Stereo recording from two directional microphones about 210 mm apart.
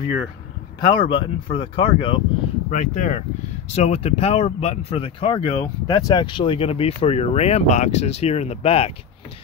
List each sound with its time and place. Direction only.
0.7 s speech: 25° left (ahead or behind)
2.7 s speech: 35° left (ahead or behind)